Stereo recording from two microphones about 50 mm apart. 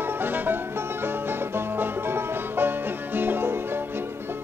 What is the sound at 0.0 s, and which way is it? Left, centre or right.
Music, right.